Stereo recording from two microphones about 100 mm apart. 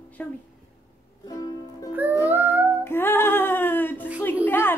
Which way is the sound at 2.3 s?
20° right (ahead or behind).